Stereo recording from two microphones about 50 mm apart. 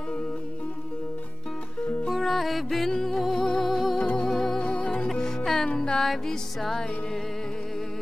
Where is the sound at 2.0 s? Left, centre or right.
Centre.